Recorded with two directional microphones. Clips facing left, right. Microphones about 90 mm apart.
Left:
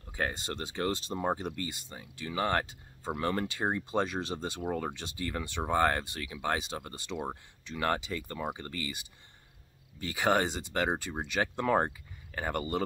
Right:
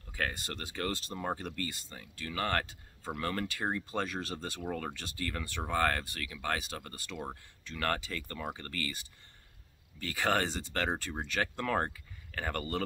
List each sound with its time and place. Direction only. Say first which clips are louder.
0.0 s speech: left 2 dB; 20° left (ahead or behind)